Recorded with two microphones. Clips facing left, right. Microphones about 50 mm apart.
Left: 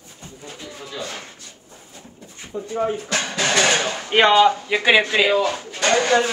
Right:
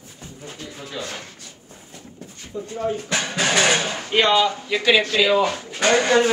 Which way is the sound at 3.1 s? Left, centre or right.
Centre.